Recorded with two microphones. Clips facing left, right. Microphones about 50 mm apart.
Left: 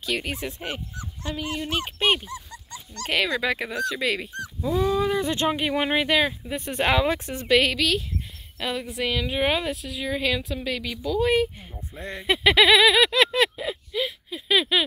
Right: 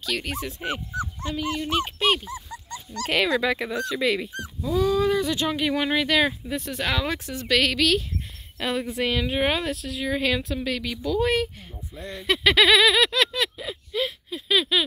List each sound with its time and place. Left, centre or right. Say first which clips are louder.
0.0 s speech: left 1 dB; centre
2.2 s dog: right 2 dB; centre
3.1 s speech: right 1 dB; centre
4.6 s speech: right 1 dB; centre
5.2 s speech: left 1 dB; left
5.5 s speech: even; centre
6.1 s a sound: right 1 dB; centre
6.5 s speech: left 4 dB; left
7.4 s a sound: left 2 dB; centre
7.7 s speech: right 2 dB; centre
11.9 s speech: left 1 dB; left
12.3 s a sound: left 1 dB; centre
14.5 s a sound: left 1 dB; centre